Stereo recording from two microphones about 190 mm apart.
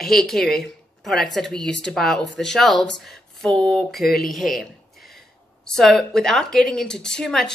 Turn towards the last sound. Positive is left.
turn(degrees=5)  # may be behind; listen again after turning